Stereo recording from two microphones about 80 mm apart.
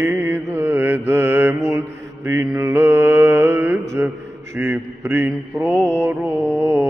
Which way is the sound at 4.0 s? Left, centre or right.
Right.